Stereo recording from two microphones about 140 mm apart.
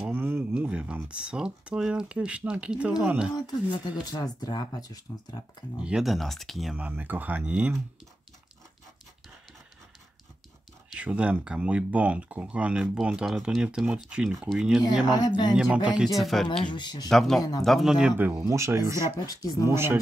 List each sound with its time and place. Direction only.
0.1 s speech: 15° right (ahead or behind)
3.3 s speech: 30° left (ahead or behind)
5.8 s speech: 5° right (ahead or behind)
6.8 s speech: 15° right (ahead or behind)
10.9 s speech: 10° right (ahead or behind)
15.1 s speech: 30° left (ahead or behind)
15.5 s speech: 5° right (ahead or behind)
16.6 s speech: 30° left (ahead or behind)
17.1 s speech: centre (ahead or behind)
17.4 s speech: 25° left (ahead or behind)
17.6 s speech: centre (ahead or behind)
18.1 s speech: 15° right (ahead or behind)
18.9 s speech: 25° left (ahead or behind)
19.7 s speech: 15° right (ahead or behind)